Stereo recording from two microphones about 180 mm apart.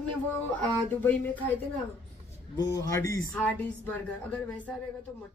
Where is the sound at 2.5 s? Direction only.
20° left (ahead or behind).